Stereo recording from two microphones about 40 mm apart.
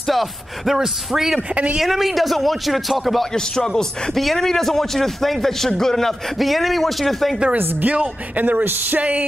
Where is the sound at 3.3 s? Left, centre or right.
Centre.